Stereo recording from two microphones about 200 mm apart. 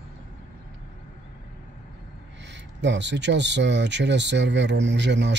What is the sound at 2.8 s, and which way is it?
Speech, 60° right (ahead or behind).